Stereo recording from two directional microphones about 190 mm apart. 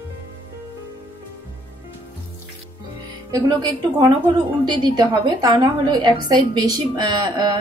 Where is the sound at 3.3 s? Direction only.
20° right (ahead or behind).